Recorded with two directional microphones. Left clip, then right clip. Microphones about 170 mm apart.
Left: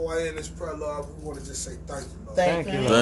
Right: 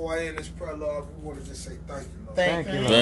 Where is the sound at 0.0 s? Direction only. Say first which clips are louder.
Left 2 dB; 30° left (ahead or behind).